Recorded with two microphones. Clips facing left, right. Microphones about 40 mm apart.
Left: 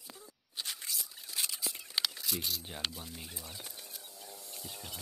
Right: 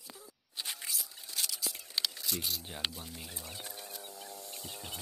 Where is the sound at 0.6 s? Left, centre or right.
Centre.